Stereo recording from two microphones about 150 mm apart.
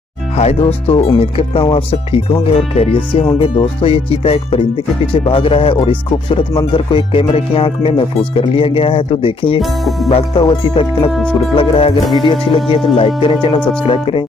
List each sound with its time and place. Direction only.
0.4 s speech: 45° left (ahead or behind)
12.0 s music: centre (ahead or behind)
12.6 s speech: 40° left (ahead or behind)